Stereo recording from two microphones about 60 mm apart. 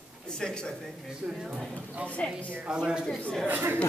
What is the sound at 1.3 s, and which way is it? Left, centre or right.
Speech, centre.